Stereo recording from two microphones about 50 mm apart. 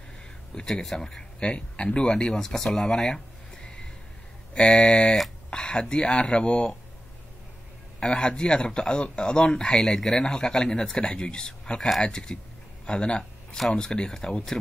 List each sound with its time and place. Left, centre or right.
0.6 s speech: centre
1.5 s speech: left
8.0 s speech: centre